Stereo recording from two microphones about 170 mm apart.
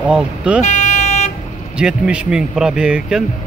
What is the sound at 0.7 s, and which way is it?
Vehicle, 45° left (ahead or behind).